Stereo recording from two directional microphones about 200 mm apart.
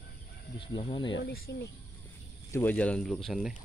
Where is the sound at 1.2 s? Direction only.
55° left (ahead or behind).